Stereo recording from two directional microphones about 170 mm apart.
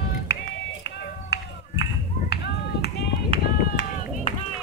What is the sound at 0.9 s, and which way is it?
Run, 80° left.